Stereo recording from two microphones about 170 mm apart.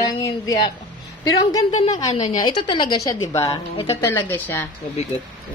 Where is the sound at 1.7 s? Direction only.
45° left (ahead or behind).